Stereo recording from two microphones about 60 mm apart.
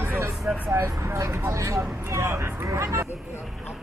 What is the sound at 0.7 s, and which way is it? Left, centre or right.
Speech, right.